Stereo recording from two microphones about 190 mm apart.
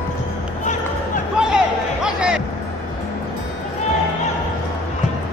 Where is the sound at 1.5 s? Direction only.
5° right (ahead or behind).